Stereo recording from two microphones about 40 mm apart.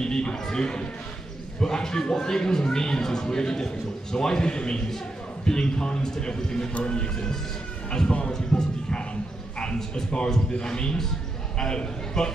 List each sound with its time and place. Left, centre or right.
0.0 s a man's voice: centre
8.5 s a sound: centre
10.1 s a man's voice: centre